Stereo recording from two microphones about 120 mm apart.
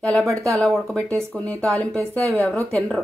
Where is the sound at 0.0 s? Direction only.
5° left (ahead or behind).